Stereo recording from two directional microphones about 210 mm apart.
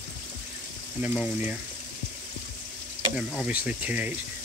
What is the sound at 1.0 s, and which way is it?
Speech, 5° right (ahead or behind).